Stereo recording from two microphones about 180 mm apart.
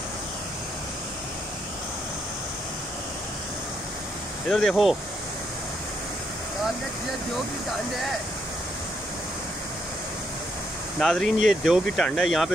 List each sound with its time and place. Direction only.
4.5 s speech: centre (ahead or behind)
11.0 s speech: 5° left (ahead or behind)